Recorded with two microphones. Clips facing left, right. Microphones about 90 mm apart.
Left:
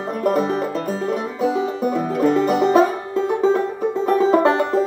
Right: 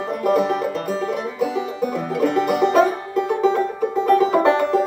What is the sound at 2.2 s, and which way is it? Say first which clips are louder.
Music: left 2 dB; 30° left (ahead or behind).